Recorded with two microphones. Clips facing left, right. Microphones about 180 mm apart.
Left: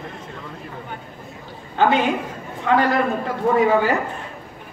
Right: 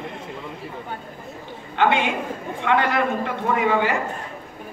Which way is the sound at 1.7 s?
40° left (ahead or behind).